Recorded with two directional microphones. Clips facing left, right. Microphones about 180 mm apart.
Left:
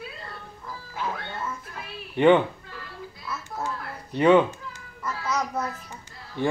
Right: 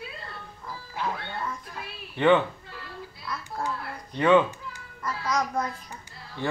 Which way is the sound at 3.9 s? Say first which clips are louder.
Left 2 dB; 15° left (ahead or behind).